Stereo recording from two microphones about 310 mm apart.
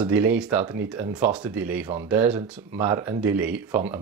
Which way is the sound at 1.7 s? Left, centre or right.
Centre.